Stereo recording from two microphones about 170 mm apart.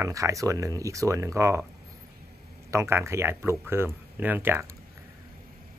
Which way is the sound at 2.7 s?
15° right (ahead or behind).